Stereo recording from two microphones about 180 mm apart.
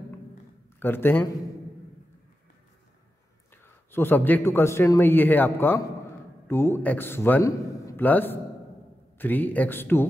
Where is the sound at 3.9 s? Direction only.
10° left (ahead or behind).